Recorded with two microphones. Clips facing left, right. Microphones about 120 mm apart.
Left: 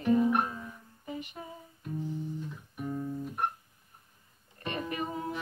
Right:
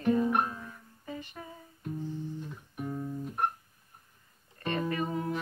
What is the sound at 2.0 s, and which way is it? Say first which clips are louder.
Music: left 2 dB; 15° left (ahead or behind).